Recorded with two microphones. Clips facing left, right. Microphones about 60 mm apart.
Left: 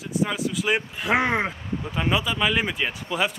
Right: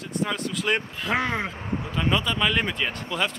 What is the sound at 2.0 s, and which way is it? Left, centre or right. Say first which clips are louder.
Speech: left 1 dB; centre.